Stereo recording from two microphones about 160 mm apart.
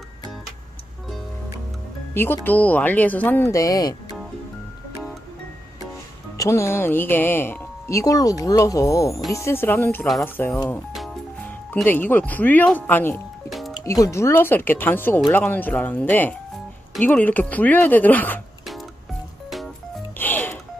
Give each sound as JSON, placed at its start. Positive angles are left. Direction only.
{"t": 2.1, "sound": "speech", "side_deg": 15}
{"t": 6.3, "sound": "speech", "side_deg": 20}
{"t": 11.7, "sound": "speech", "side_deg": 10}
{"t": 13.5, "sound": "music", "side_deg": 0}
{"t": 13.8, "sound": "speech", "side_deg": 20}
{"t": 20.2, "sound": "music", "side_deg": 10}